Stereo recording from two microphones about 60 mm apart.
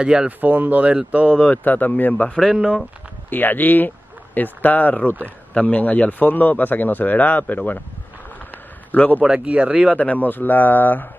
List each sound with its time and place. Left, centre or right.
0.0 s speech: centre
0.4 s speech: right
1.5 s a man's voice: left
3.3 s a man's voice: left
8.9 s a man's voice: left
9.2 s speech: centre
9.9 s speech: left